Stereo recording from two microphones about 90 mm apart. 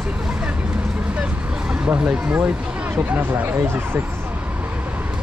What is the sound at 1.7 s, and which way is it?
Speech, 10° right (ahead or behind).